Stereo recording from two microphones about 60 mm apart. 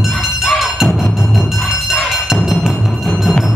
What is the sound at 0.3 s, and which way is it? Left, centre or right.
Music, centre.